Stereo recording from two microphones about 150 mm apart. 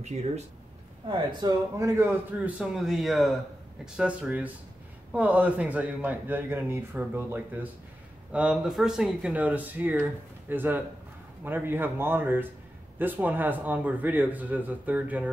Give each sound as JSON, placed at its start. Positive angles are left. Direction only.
{"t": 1.0, "sound": "speech", "side_deg": -30}
{"t": 1.8, "sound": "a man's voice", "side_deg": -15}